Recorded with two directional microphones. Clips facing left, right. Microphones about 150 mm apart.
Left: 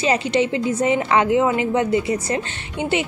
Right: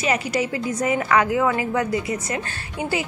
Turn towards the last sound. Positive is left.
turn(degrees=25)  # may be behind; listen again after turning